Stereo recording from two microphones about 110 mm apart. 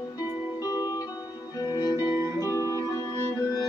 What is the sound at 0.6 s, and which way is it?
Music, 35° left (ahead or behind).